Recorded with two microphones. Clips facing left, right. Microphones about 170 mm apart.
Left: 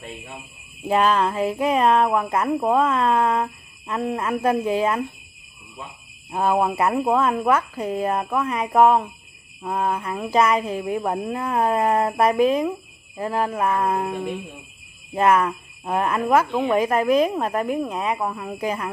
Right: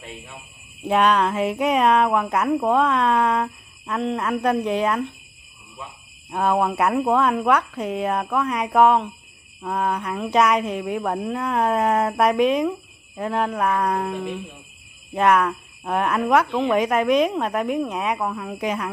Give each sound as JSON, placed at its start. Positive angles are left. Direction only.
{"t": 0.8, "sound": "speech", "side_deg": 0}
{"t": 6.3, "sound": "speech", "side_deg": 5}
{"t": 14.1, "sound": "speech", "side_deg": 20}
{"t": 15.0, "sound": "speech", "side_deg": 5}